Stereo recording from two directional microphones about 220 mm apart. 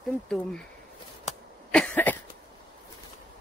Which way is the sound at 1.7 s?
5° left (ahead or behind).